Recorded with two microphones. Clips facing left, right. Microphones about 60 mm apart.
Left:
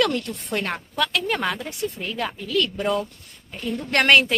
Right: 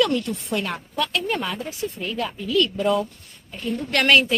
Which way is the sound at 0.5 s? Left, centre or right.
Left.